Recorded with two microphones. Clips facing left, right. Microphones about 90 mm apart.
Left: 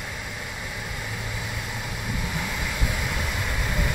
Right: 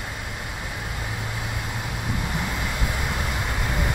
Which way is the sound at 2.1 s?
25° right (ahead or behind).